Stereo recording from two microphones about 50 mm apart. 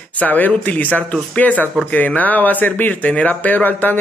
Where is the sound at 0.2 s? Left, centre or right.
Left.